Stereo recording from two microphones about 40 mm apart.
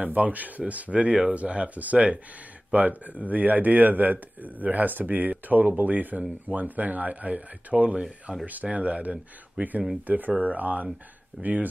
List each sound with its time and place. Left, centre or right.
0.0 s speech: right